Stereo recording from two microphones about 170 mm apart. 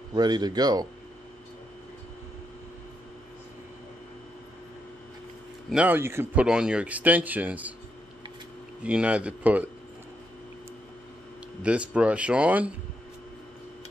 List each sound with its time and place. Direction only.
0.1 s speech: 25° right (ahead or behind)
5.7 s speech: 10° right (ahead or behind)
8.8 s speech: 5° right (ahead or behind)
11.6 s speech: 5° right (ahead or behind)